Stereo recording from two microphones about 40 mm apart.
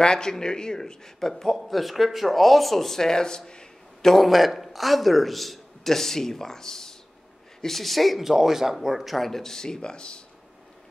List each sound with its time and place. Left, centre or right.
0.0 s a man's voice: centre
4.1 s a man's voice: centre; by 10.2 s left